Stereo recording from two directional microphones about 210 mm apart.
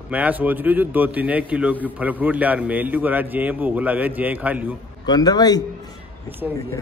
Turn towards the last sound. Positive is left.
turn(degrees=20)  # may be behind; listen again after turning